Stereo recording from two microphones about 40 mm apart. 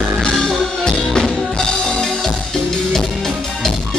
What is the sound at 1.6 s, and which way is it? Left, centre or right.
Music, centre.